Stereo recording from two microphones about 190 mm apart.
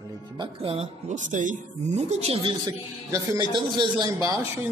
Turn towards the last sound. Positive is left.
turn(degrees=-15)  # may be behind; listen again after turning